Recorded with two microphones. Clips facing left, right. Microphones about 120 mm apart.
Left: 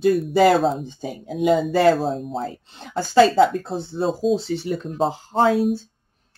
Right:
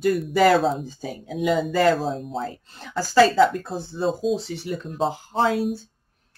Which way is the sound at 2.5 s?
25° left (ahead or behind).